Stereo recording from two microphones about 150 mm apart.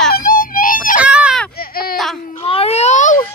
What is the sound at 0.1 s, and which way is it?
Wail, 70° left (ahead or behind).